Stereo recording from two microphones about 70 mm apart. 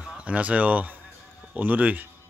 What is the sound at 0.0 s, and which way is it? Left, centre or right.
Speech, centre.